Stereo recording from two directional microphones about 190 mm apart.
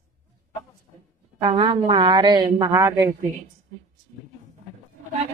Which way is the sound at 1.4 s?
30° right (ahead or behind).